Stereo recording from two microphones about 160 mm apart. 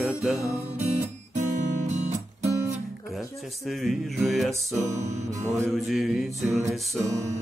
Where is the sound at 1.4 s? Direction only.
50° right (ahead or behind).